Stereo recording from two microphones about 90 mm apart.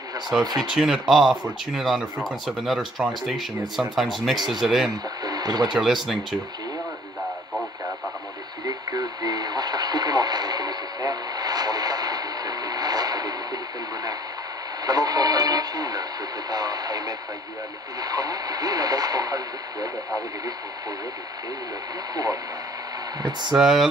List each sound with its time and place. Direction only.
0.6 s speech: 5° right (ahead or behind)
3.1 s speech: centre (ahead or behind)
5.2 s radio: 45° right (ahead or behind)
5.8 s speech: centre (ahead or behind)
8.6 s radio: 45° right (ahead or behind)
14.9 s radio: 45° right (ahead or behind)
18.0 s speech: 45° right (ahead or behind)
22.1 s speech: 45° right (ahead or behind)
23.5 s speech: 5° right (ahead or behind)